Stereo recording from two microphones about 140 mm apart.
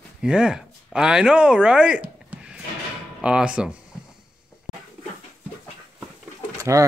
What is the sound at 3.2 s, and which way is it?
Speech, 5° right (ahead or behind).